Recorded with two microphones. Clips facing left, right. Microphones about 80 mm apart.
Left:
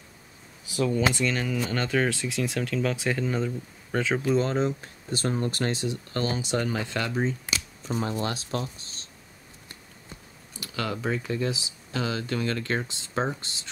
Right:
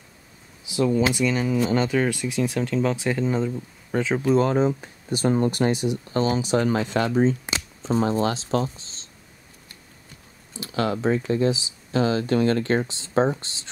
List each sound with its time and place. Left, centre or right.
0.7 s speech: centre
7.0 s speech: right
7.4 s speech: right
10.7 s speech: right